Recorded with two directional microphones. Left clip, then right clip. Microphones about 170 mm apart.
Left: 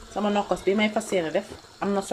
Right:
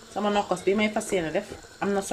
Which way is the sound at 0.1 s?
5° left (ahead or behind).